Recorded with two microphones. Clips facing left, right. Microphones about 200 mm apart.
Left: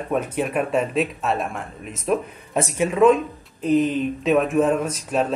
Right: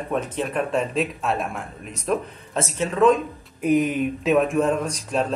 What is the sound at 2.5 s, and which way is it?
Speech, 15° left (ahead or behind).